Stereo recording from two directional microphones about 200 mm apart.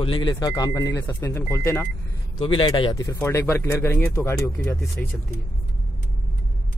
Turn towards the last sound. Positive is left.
turn(degrees=10)  # may be behind; listen again after turning